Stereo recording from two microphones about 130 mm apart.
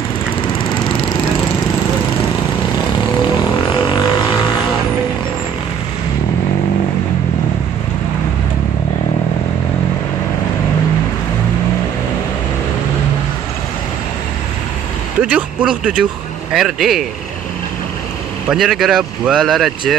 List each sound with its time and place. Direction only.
3.2 s didgeridoo: 35° left (ahead or behind)
15.2 s a sound: 10° right (ahead or behind)
16.5 s speech: centre (ahead or behind)
18.5 s speech: centre (ahead or behind)